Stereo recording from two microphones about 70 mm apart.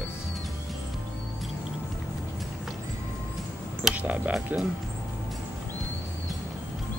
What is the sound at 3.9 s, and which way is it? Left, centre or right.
Speech, centre.